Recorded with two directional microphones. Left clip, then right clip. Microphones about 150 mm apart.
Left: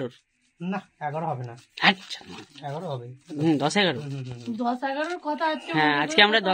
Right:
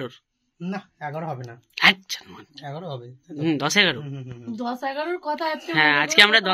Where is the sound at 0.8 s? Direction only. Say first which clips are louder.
Left 2 dB; 5° left (ahead or behind).